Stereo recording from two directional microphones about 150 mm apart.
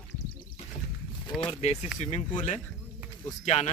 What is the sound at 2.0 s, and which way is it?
Speech, 50° left (ahead or behind).